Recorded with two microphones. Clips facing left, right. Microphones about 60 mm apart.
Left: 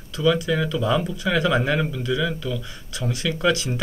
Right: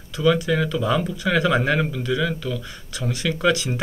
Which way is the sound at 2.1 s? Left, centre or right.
Right.